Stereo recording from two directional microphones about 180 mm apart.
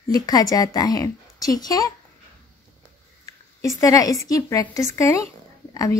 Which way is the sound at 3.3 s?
35° right (ahead or behind).